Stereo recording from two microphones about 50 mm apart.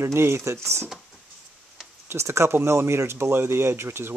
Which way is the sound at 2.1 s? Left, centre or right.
Right.